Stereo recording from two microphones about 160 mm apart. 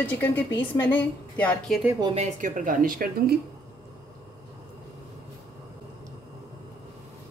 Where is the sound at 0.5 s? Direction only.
30° left (ahead or behind).